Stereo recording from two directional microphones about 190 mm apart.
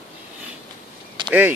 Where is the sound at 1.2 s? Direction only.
25° right (ahead or behind).